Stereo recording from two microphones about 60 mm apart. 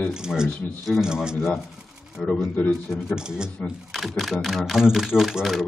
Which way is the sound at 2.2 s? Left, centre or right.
Centre.